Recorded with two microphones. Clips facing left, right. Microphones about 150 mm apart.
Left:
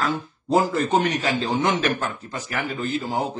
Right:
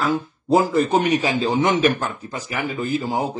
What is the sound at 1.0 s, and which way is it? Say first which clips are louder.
A man's voice: right 4 dB; 10° right (ahead or behind).